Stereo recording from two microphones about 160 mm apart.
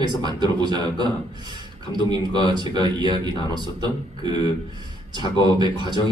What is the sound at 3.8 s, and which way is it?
A man's voice, 25° right (ahead or behind).